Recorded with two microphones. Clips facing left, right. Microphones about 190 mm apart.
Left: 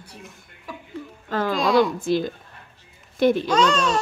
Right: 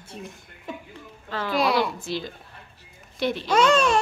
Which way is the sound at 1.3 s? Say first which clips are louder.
Left 3 dB; 45° left (ahead or behind).